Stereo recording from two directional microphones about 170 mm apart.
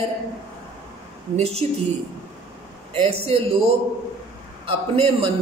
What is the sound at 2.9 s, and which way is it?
Speech, 35° right (ahead or behind).